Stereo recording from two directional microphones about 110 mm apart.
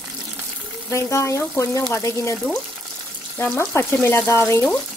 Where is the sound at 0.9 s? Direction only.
25° left (ahead or behind).